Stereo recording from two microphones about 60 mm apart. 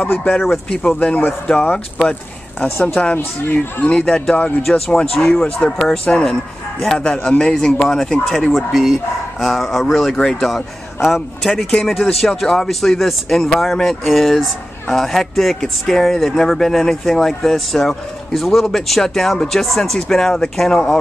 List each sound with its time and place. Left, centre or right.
0.0 s a man's voice: left
0.4 s speech: centre
1.0 s speech: left
1.5 s speech: centre
3.2 s a man's voice: left
3.8 s speech: centre
4.6 s speech: centre
7.0 s speech: centre
8.4 s speech: centre